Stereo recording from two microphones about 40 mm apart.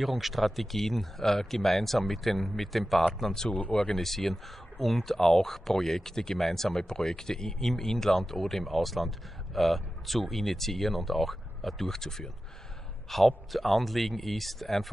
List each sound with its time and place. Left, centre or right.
0.0 s speech: centre
3.2 s speech: centre
3.4 s speech: left
3.7 s speech: centre